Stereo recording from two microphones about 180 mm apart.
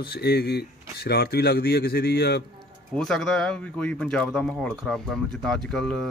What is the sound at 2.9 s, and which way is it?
Speech, centre (ahead or behind).